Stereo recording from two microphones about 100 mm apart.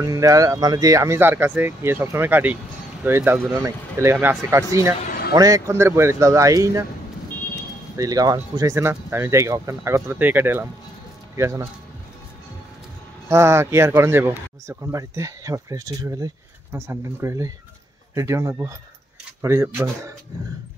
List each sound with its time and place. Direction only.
0.0 s speech: 35° right (ahead or behind); by 3.2 s 15° right (ahead or behind)
3.2 s speech: 25° right (ahead or behind)
8.0 s speech: 40° right (ahead or behind)
8.7 s speech: 25° right (ahead or behind)
13.3 s speech: 25° right (ahead or behind)
16.7 s speech: 25° right (ahead or behind)